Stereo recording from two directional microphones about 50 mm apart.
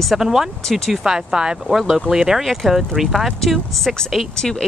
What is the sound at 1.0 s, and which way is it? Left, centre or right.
Speech, centre.